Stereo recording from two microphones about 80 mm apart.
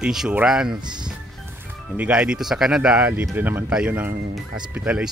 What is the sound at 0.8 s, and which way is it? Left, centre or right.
Music, right.